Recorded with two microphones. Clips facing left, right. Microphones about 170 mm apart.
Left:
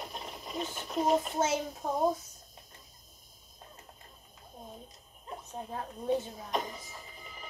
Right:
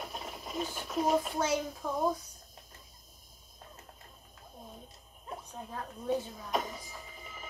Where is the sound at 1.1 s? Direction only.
25° left (ahead or behind).